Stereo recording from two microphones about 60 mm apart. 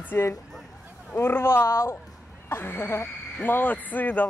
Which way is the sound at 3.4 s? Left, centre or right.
Left.